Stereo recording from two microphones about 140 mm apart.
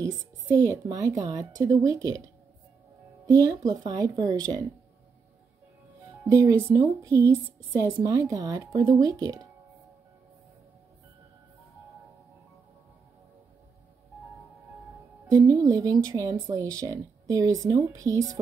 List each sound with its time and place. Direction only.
0.0 s a woman's voice: 25° right (ahead or behind)
6.2 s speech: 25° right (ahead or behind)
15.2 s speech: 30° right (ahead or behind)